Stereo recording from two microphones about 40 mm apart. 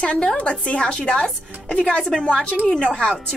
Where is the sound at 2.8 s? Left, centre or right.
Left.